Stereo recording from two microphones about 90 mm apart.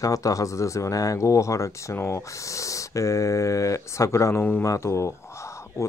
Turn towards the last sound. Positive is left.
turn(degrees=30)  # may be behind; listen again after turning